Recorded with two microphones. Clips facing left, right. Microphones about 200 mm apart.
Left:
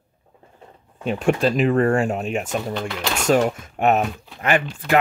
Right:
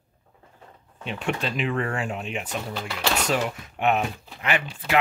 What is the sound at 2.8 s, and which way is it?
Speech, centre (ahead or behind).